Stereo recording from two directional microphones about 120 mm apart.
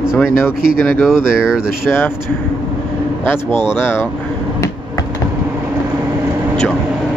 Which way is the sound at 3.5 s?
40° right (ahead or behind).